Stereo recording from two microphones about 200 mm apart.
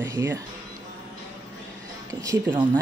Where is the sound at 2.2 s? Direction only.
15° right (ahead or behind).